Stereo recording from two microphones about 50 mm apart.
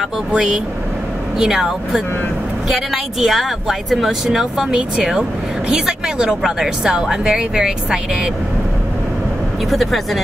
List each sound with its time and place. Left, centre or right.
0.3 s a woman's voice: centre
9.7 s speech: centre